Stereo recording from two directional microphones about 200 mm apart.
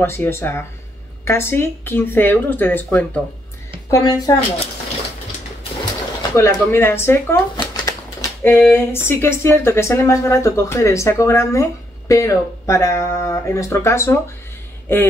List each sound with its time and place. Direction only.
0.0 s speech: 10° left (ahead or behind)
6.3 s speech: 15° left (ahead or behind)